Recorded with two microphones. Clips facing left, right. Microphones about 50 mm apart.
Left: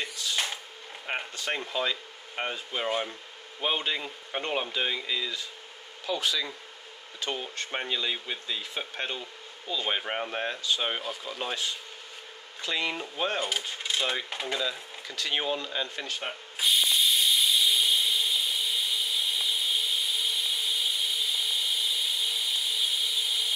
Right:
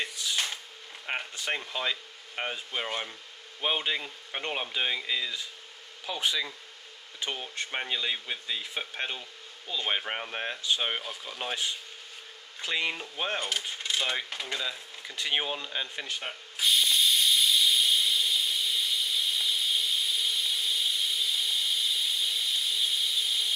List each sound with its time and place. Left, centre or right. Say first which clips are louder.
1.1 s speech: even; centre
3.6 s speech: even; centre
6.0 s speech: left 1 dB; centre
12.6 s speech: even; centre
12.9 s speech: left 2 dB; centre
13.8 s coin: left 1 dB; centre
14.3 s speech: left 3 dB; centre
14.6 s speech: left 3 dB; centre
16.2 s a sound: left 1 dB; centre